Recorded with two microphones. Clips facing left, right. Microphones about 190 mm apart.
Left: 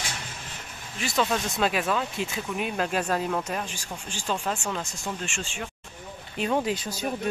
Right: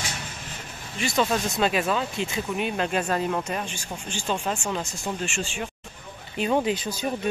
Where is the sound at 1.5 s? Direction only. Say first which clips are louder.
Right 1 dB; centre (ahead or behind).